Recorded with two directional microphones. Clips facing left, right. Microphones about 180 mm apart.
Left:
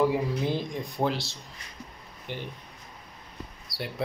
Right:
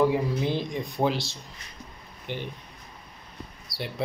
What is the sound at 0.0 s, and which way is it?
Speech, 5° left (ahead or behind).